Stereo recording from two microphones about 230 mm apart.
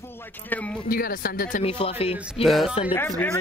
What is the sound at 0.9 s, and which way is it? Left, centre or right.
Speech, left.